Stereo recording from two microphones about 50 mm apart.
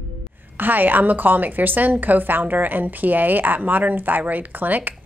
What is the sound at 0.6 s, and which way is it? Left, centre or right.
Speech, right.